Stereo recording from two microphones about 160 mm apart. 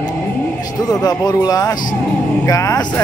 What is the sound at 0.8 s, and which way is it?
Speech, 25° left (ahead or behind).